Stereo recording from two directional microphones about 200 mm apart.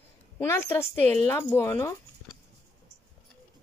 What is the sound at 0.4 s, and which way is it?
Speech, 10° left (ahead or behind).